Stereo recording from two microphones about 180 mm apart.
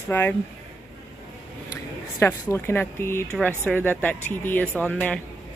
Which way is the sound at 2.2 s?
15° left (ahead or behind).